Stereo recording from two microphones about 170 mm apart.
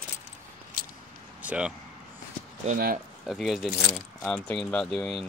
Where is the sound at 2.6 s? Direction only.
55° right (ahead or behind).